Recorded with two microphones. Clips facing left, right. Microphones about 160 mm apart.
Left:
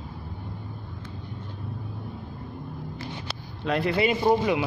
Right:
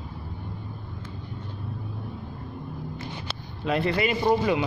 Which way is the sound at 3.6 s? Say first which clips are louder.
Even; centre (ahead or behind).